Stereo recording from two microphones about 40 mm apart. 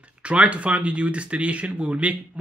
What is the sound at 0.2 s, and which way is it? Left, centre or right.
Speech, right.